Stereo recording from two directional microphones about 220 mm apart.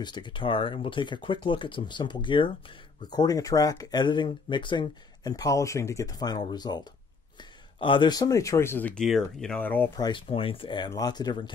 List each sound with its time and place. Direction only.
0.0 s speech: 20° left (ahead or behind)